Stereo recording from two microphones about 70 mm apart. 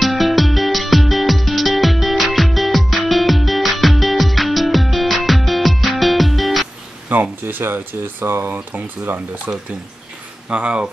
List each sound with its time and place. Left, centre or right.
0.0 s music: centre
7.1 s speech: right
10.5 s speech: centre